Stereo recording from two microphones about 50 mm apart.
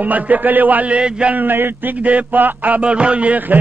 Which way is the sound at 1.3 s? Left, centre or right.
Right.